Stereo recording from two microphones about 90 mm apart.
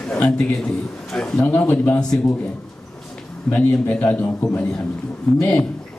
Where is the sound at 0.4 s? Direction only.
5° left (ahead or behind).